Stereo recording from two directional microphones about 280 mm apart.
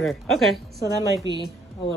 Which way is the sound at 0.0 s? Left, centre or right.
Centre.